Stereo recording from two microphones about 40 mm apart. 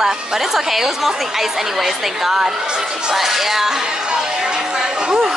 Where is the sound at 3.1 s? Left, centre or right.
Centre; by 5.3 s right.